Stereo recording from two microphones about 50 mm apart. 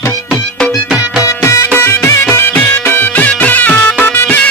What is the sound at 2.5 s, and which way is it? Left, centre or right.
Music, left.